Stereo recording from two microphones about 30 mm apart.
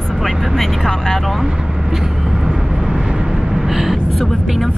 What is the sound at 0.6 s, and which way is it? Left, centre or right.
Speech, centre.